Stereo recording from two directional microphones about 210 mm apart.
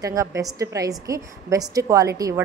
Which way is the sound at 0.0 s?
15° right (ahead or behind).